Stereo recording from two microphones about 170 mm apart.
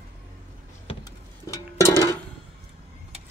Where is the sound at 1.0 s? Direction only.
15° left (ahead or behind).